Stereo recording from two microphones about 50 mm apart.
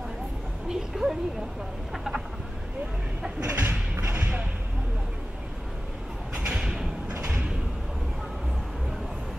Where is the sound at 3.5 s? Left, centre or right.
Right.